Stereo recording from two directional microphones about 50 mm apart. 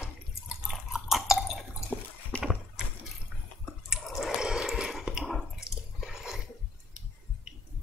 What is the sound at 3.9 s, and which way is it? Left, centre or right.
Water, centre.